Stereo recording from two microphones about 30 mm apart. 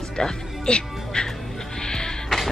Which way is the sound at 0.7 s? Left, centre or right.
Left.